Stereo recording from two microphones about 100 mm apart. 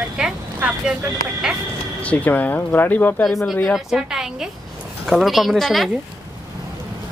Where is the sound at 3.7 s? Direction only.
Centre (ahead or behind).